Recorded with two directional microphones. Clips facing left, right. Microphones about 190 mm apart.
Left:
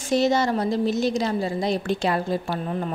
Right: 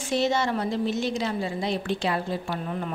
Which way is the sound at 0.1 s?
40° left (ahead or behind).